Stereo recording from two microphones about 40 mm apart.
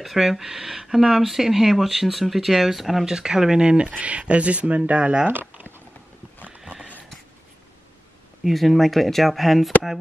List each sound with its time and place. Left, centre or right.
0.0 s speech: centre
3.1 s speech: centre; by 5.1 s right
5.3 s a sound: right
8.5 s speech: centre